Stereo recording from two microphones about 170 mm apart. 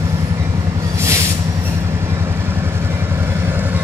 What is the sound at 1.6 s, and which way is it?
Vehicle, 15° right (ahead or behind).